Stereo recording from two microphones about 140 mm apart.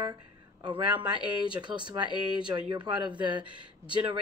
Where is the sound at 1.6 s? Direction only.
35° right (ahead or behind).